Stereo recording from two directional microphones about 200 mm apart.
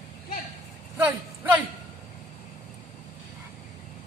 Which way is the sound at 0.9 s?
10° right (ahead or behind).